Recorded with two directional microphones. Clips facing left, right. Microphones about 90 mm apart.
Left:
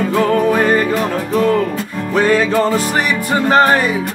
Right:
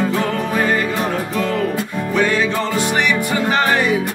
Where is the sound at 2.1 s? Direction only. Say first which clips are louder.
Left 5 dB; 40° left (ahead or behind).